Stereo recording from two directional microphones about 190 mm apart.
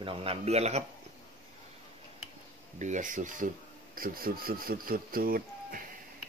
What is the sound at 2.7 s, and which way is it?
Speech, 40° right (ahead or behind).